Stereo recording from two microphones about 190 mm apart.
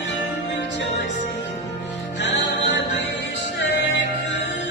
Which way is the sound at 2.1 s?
65° left (ahead or behind).